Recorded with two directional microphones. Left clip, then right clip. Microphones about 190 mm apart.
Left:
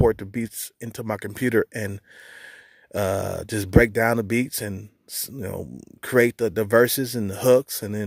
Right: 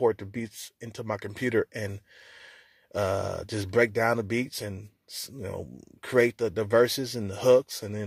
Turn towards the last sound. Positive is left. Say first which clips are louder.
# left 3 dB
turn(degrees=50)  # may be behind; listen again after turning